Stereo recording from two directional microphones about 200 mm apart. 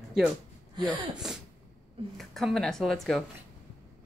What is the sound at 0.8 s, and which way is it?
Speech, 5° right (ahead or behind).